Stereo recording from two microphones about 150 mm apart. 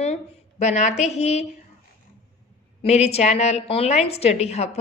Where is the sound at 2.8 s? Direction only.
45° left (ahead or behind).